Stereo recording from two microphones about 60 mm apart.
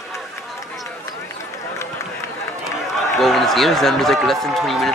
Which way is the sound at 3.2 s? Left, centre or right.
Centre.